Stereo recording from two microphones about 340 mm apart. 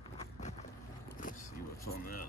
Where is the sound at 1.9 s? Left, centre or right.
Left.